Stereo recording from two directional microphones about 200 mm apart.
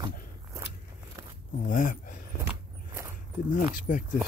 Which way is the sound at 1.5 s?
40° left (ahead or behind).